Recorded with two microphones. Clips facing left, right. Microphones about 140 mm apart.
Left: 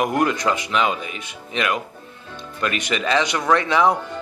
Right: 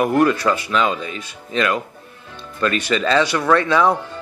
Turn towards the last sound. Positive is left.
turn(degrees=15)  # may be behind; listen again after turning